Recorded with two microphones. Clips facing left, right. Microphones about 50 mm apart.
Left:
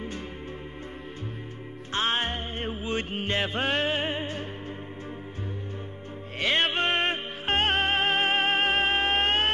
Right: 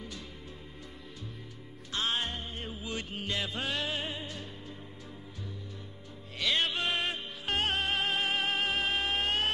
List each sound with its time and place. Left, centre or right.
2.0 s music: left
6.4 s music: left